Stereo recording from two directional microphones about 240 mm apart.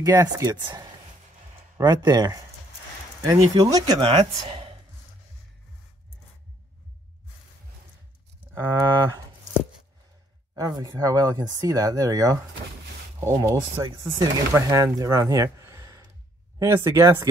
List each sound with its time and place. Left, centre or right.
0.0 s speech: centre
8.5 s speech: centre
10.5 s speech: centre